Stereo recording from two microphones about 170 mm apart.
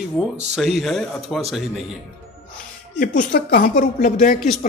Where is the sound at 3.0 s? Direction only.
55° left (ahead or behind).